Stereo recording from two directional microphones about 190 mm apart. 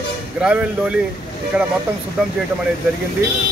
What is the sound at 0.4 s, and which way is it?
Speech, 5° right (ahead or behind).